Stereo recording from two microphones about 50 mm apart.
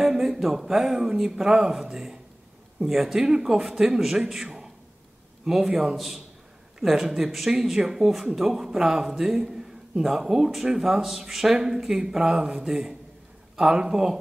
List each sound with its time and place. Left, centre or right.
0.0 s a man's voice: centre